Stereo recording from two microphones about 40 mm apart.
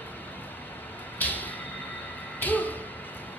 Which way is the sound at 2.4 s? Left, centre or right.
Left.